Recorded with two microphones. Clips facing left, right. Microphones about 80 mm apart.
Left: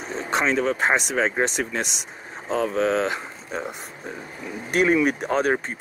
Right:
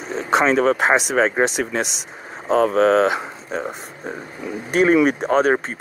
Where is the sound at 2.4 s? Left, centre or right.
Right.